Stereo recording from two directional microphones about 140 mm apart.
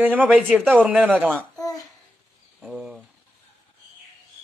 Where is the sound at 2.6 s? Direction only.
Centre (ahead or behind).